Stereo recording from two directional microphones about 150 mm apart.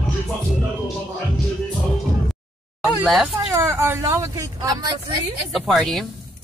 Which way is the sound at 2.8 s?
5° right (ahead or behind).